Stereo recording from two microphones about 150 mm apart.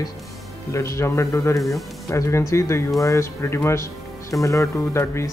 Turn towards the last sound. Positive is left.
turn(degrees=15)  # may be behind; listen again after turning